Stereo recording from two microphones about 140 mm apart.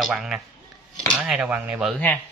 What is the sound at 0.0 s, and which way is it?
Speech, 5° right (ahead or behind).